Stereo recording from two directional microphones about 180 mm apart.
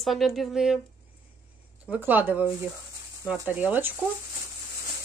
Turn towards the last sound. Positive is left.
turn(degrees=-10)  # may be behind; listen again after turning